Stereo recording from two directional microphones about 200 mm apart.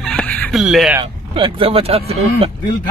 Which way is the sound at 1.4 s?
30° right (ahead or behind).